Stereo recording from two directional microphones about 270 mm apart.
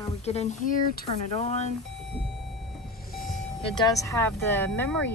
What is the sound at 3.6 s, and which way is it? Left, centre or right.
Speech, centre.